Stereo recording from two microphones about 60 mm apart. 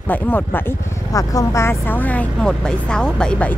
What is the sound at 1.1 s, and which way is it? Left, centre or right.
Speech, left.